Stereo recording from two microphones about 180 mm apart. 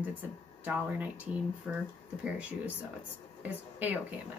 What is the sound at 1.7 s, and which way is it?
Speech, 5° right (ahead or behind).